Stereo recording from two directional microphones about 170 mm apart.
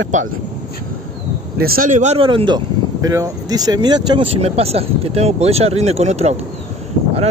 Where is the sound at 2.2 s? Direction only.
30° right (ahead or behind).